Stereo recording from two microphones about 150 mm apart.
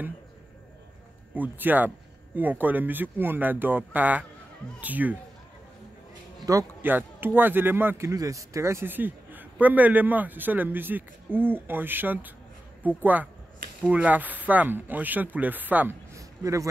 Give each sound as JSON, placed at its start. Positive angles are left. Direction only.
{"t": 1.3, "sound": "speech", "side_deg": -10}
{"t": 6.5, "sound": "speech", "side_deg": -25}
{"t": 6.8, "sound": "speech", "side_deg": -15}